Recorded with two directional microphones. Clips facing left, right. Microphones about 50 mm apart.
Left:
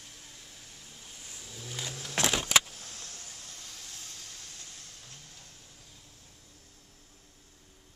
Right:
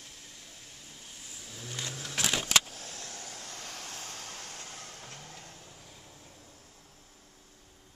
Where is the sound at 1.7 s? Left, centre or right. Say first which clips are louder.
Even; centre.